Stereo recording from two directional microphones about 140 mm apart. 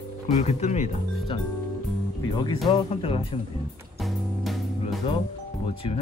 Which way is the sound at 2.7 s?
40° left (ahead or behind).